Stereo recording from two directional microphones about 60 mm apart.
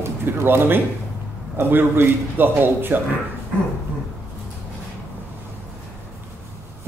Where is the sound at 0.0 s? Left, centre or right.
Right.